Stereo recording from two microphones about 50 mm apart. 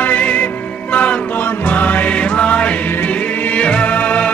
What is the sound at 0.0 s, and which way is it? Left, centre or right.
Music, left.